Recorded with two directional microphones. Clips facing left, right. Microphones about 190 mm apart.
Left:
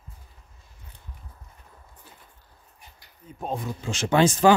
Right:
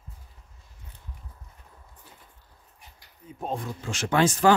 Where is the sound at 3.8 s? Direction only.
25° left (ahead or behind).